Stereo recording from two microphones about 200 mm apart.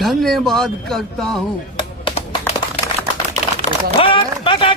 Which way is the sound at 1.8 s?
25° left (ahead or behind).